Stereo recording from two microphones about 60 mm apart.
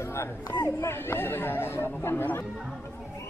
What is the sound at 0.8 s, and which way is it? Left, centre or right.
Chatter, left.